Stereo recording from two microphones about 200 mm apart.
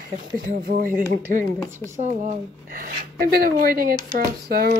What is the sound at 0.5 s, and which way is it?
A woman's voice, 45° right (ahead or behind).